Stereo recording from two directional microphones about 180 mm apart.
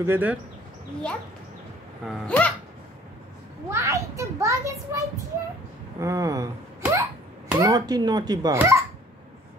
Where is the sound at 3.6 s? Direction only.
15° right (ahead or behind).